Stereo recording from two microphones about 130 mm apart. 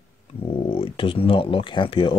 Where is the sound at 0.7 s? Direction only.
40° left (ahead or behind).